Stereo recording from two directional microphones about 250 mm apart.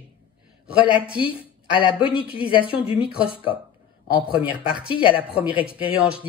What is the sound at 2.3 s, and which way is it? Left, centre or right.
Speech, left.